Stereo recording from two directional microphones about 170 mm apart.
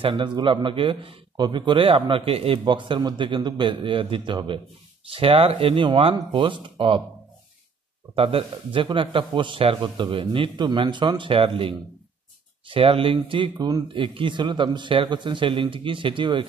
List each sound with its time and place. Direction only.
0.0 s a man's voice: 30° right (ahead or behind)
8.1 s a man's voice: 35° right (ahead or behind)